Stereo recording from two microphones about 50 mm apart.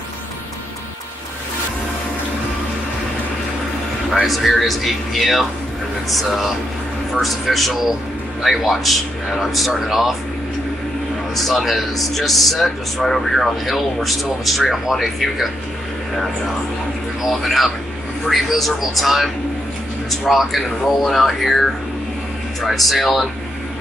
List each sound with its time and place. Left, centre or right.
4.3 s speech: centre
11.3 s speech: centre
17.3 s speech: centre